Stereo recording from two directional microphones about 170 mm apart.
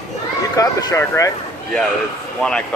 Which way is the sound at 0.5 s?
20° left (ahead or behind).